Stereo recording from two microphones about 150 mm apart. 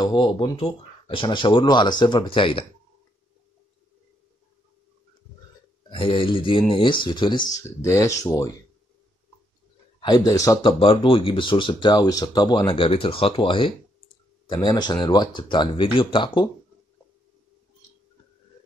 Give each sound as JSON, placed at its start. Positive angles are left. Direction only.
{"t": 0.0, "sound": "speech", "side_deg": 30}
{"t": 5.9, "sound": "speech", "side_deg": 35}
{"t": 9.9, "sound": "speech", "side_deg": 30}